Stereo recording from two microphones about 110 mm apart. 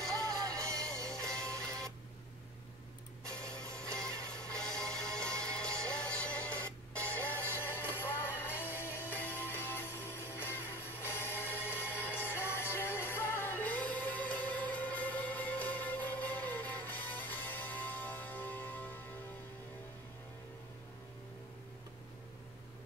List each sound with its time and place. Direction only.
0.1 s music: 30° right (ahead or behind)
3.5 s music: 10° left (ahead or behind)
7.4 s music: 20° right (ahead or behind)
8.0 s music: 20° left (ahead or behind)